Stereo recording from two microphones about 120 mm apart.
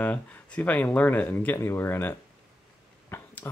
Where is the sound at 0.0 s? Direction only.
15° left (ahead or behind).